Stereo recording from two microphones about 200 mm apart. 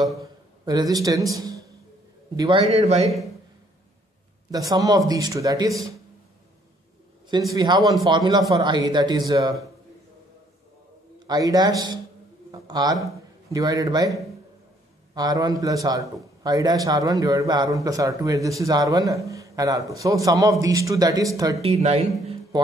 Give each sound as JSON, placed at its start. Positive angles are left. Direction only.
{"t": 0.2, "sound": "a man's voice", "side_deg": -20}
{"t": 2.7, "sound": "speech", "side_deg": -35}
{"t": 4.5, "sound": "a man's voice", "side_deg": -20}
{"t": 7.5, "sound": "speech", "side_deg": -20}
{"t": 11.2, "sound": "a man's voice", "side_deg": -20}
{"t": 15.1, "sound": "a man's voice", "side_deg": -20}
{"t": 21.5, "sound": "speech", "side_deg": -30}